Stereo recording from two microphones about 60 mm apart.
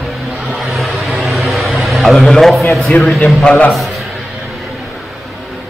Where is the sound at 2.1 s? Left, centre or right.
Centre.